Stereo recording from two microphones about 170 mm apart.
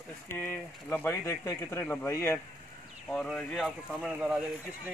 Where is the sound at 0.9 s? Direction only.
15° left (ahead or behind).